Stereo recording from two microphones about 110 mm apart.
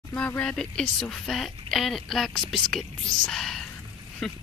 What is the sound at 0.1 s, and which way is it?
A woman's voice, 15° left (ahead or behind).